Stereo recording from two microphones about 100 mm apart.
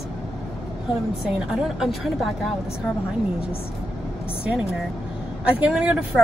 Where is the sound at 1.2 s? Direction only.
5° right (ahead or behind).